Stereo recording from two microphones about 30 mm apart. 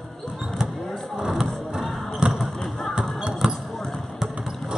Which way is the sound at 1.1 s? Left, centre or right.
Right.